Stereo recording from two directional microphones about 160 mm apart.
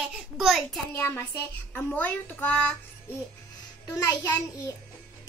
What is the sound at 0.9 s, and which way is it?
A child's voice, 15° left (ahead or behind).